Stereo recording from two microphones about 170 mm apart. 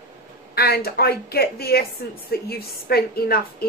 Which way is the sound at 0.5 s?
65° left (ahead or behind).